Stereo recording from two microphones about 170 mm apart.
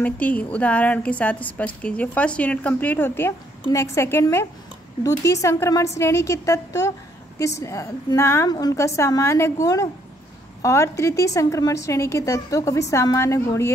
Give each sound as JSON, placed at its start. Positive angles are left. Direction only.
{"t": 0.0, "sound": "a woman's voice", "side_deg": 10}